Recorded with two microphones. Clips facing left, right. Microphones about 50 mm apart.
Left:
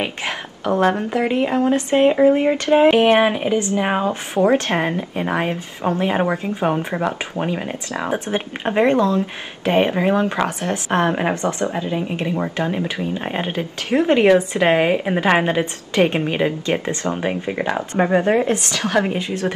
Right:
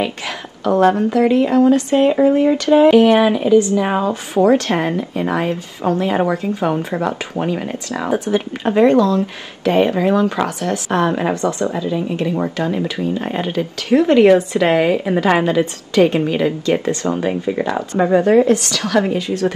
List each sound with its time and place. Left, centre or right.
0.7 s speech: left
8.3 s speech: left